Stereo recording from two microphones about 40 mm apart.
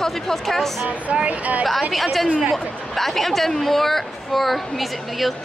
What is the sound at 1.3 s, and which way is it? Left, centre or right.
Speech, right.